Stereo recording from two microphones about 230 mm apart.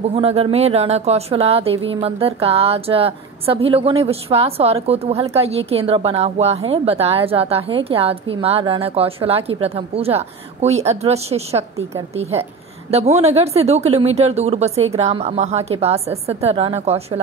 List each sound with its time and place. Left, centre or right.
0.0 s a woman's voice: right